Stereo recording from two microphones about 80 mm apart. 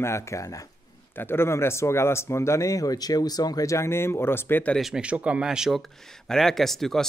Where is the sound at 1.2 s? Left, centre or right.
Left.